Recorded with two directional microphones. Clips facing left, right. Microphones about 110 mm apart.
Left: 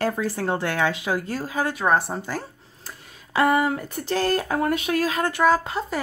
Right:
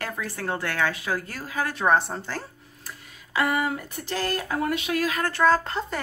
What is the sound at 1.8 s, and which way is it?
Speech, 5° left (ahead or behind).